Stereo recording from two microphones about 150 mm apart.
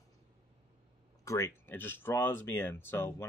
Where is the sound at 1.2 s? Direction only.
20° left (ahead or behind).